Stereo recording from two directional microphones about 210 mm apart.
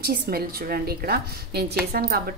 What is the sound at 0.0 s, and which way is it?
A woman's voice, 45° right (ahead or behind).